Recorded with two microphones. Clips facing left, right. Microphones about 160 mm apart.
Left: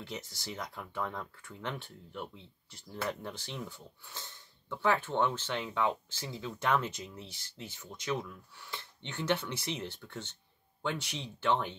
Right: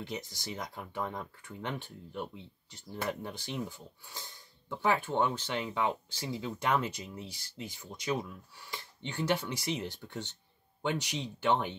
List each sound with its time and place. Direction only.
0.0 s speech: 15° right (ahead or behind)